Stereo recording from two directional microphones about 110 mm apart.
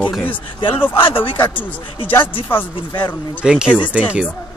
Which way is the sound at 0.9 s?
55° left (ahead or behind).